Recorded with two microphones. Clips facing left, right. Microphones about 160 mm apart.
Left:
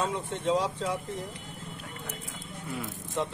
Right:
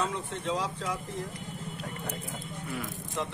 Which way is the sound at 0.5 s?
30° left (ahead or behind).